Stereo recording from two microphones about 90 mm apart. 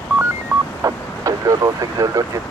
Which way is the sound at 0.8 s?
40° right (ahead or behind).